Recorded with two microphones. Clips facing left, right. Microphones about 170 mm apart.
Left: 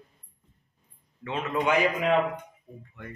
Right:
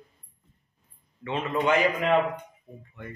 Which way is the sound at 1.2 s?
Centre (ahead or behind).